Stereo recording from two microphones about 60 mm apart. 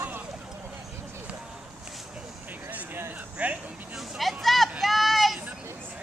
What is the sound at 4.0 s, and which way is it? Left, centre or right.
Vehicle, centre.